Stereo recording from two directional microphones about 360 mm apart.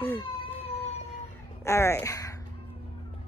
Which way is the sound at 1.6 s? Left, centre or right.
Centre.